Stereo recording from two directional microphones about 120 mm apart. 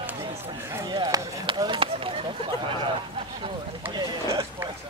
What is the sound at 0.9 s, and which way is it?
Chop, 35° right (ahead or behind).